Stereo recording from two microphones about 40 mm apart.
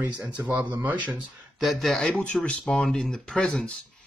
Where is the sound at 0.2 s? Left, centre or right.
Right.